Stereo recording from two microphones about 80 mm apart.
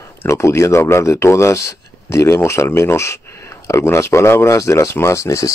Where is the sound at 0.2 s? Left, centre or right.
Left.